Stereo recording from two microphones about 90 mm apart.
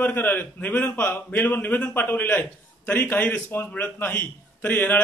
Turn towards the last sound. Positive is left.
turn(degrees=20)  # may be behind; listen again after turning